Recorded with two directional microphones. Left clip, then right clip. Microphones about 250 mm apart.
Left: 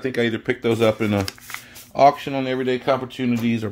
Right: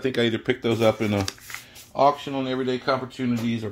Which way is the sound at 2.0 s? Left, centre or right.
Left.